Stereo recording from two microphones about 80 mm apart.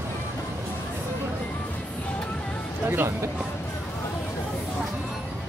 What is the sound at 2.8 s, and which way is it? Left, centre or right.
Speech, right.